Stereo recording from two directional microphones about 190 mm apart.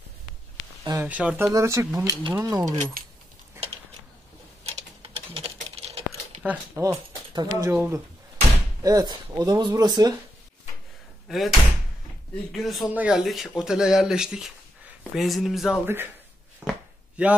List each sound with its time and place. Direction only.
1.0 s speech: 5° right (ahead or behind)
4.6 s typing: 30° right (ahead or behind)
6.4 s speech: 10° right (ahead or behind)
11.2 s speech: centre (ahead or behind)
12.5 s a man's voice: centre (ahead or behind)
16.6 s chopping: centre (ahead or behind)
17.2 s speech: 5° right (ahead or behind)